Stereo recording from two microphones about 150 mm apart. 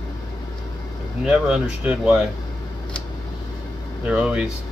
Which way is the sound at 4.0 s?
10° right (ahead or behind).